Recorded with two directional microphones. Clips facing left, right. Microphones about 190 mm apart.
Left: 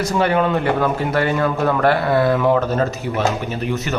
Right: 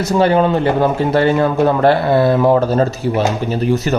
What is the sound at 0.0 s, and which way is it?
A man's voice, 30° right (ahead or behind).